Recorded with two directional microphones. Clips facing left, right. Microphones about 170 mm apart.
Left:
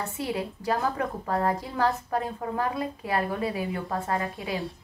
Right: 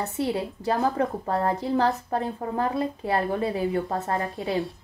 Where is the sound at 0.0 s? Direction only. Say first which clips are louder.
Right 4 dB; 25° right (ahead or behind).